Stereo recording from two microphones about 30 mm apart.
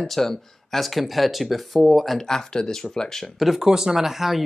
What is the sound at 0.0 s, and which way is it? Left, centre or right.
Speech, centre.